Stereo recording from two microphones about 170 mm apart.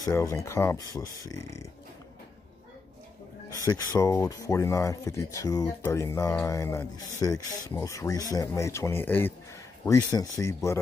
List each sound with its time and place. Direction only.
0.0 s speech: 15° left (ahead or behind)
3.5 s speech: 20° left (ahead or behind)